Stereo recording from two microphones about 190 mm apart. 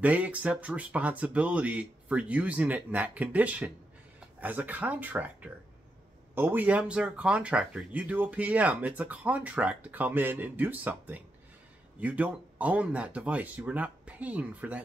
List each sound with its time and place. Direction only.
0.0 s speech: 5° right (ahead or behind)